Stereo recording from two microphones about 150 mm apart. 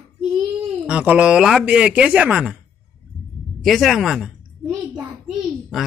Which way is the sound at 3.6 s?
Centre (ahead or behind).